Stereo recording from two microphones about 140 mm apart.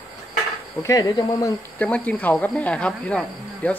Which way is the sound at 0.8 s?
25° left (ahead or behind).